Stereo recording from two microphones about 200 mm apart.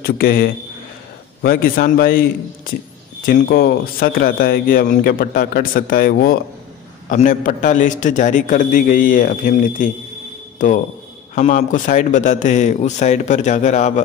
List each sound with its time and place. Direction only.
0.0 s a man's voice: 50° left (ahead or behind)